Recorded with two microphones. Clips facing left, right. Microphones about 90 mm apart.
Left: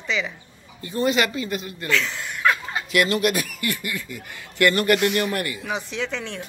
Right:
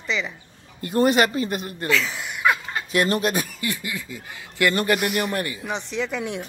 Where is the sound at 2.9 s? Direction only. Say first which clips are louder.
Left 1 dB; 30° right (ahead or behind).